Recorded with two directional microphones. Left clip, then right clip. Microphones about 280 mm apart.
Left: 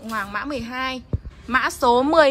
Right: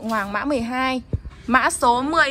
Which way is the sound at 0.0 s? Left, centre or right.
Centre.